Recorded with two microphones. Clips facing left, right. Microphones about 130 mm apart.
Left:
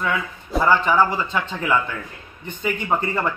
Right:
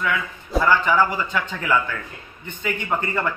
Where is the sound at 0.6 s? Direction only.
25° left (ahead or behind).